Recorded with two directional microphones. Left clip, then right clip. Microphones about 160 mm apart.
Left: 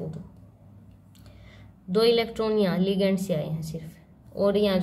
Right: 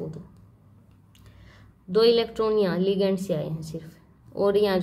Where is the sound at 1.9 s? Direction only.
10° right (ahead or behind).